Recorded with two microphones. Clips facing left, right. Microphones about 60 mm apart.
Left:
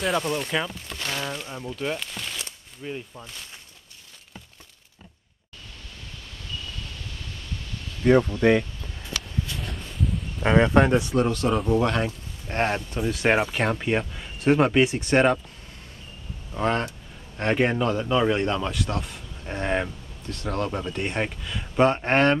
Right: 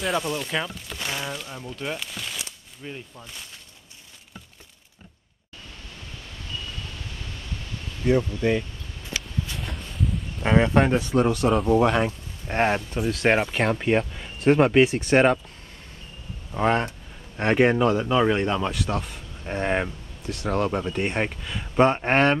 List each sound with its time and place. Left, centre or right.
0.0 s speech: centre
8.0 s speech: left
9.6 s a sound: centre
11.0 s speech: centre
13.0 s speech: centre
16.5 s speech: centre
19.4 s speech: centre